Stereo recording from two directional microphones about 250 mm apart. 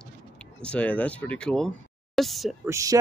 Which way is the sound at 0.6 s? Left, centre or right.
Centre.